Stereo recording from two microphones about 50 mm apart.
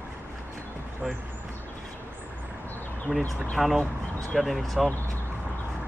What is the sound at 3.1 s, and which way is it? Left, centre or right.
Speech, right.